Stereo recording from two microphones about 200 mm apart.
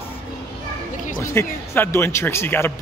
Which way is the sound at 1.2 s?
10° left (ahead or behind).